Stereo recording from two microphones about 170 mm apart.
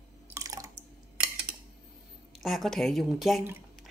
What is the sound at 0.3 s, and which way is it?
Drip, 20° right (ahead or behind).